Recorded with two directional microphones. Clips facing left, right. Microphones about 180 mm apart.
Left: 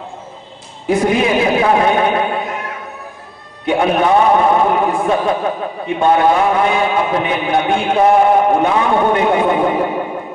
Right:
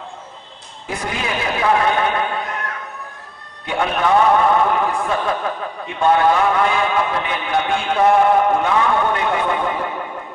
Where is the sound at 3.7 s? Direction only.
25° left (ahead or behind).